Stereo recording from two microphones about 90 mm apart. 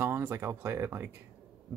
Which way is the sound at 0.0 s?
30° right (ahead or behind).